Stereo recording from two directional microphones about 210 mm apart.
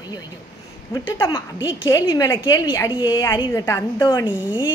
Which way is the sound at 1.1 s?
15° left (ahead or behind).